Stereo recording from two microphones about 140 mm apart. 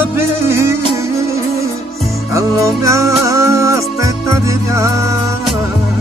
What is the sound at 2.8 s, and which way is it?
Music, 20° right (ahead or behind).